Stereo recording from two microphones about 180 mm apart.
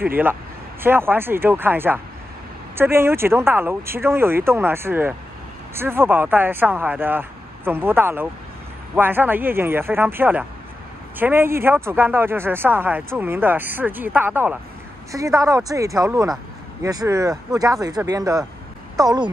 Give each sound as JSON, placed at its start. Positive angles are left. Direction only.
{"t": 0.0, "sound": "speech", "side_deg": -10}